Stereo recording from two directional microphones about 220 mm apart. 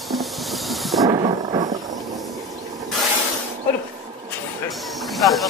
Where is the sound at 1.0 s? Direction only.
20° right (ahead or behind).